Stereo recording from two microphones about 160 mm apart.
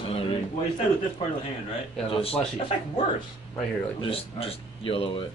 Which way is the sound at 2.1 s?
35° left (ahead or behind).